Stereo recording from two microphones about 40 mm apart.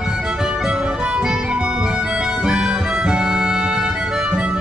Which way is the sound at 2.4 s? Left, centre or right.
Right.